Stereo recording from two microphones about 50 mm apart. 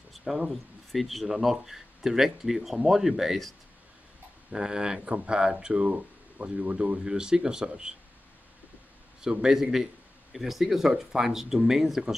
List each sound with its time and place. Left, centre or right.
0.1 s a sound: centre
0.5 s speech: centre
4.5 s speech: centre
9.3 s speech: centre